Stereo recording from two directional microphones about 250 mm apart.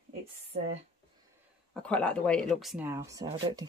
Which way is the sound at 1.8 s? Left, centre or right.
Centre.